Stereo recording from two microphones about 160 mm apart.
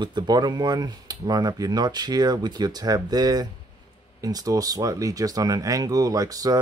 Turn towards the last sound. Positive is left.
turn(degrees=-25)  # may be behind; listen again after turning